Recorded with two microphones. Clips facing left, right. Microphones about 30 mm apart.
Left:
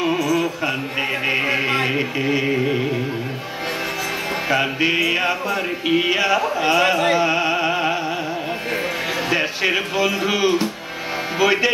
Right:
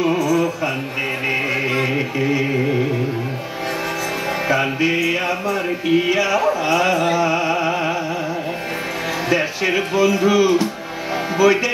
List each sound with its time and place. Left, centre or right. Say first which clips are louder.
0.0 s music: right 2 dB; centre
2.0 s chant: right 1 dB; centre
4.5 s chant: right 1 dB; centre
4.8 s music: even; centre
9.3 s music: right 1 dB; centre